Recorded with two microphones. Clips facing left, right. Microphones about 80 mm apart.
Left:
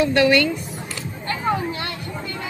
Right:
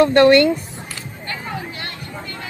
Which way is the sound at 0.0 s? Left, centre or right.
Right.